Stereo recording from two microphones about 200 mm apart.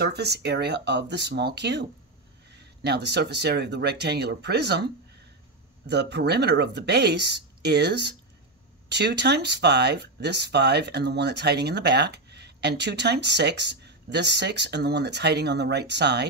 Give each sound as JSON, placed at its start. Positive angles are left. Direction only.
{"t": 0.0, "sound": "speech", "side_deg": -55}
{"t": 5.9, "sound": "speech", "side_deg": -55}